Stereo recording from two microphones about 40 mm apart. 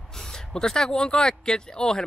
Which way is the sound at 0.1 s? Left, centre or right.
Centre.